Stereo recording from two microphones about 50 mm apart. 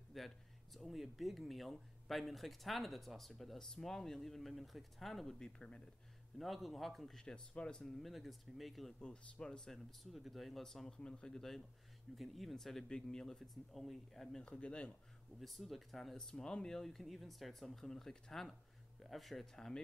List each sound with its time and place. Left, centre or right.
0.1 s a sound: centre
0.7 s speech: centre
5.4 s speech: centre
6.3 s speech: centre
8.0 s speech: centre
9.0 s speech: centre
9.7 s speech: centre
12.2 s speech: centre
14.4 s speech: left
15.4 s speech: centre